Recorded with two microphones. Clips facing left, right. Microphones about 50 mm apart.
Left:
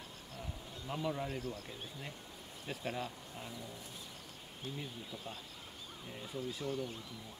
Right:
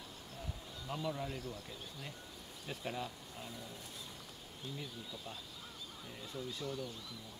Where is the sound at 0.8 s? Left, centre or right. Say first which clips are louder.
Left 2 dB; centre.